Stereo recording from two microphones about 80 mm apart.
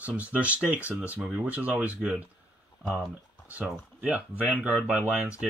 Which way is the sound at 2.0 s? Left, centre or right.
Centre.